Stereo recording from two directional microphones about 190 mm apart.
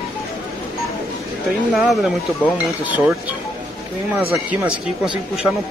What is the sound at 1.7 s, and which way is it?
Speech, centre (ahead or behind).